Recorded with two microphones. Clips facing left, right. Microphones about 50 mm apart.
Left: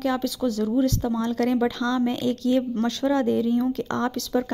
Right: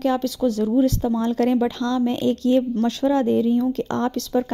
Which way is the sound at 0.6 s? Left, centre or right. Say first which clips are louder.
Right 3 dB; centre.